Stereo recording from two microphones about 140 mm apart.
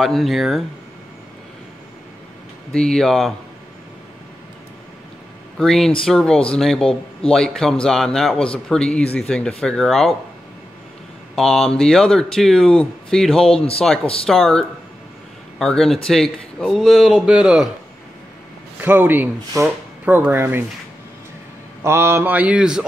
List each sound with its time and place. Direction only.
0.0 s speech: centre (ahead or behind)
2.7 s speech: 5° left (ahead or behind)
5.6 s speech: 5° left (ahead or behind)
11.3 s speech: centre (ahead or behind)
18.8 s speech: 15° right (ahead or behind)
20.2 s mantra: 15° right (ahead or behind)
21.8 s mantra: 20° right (ahead or behind)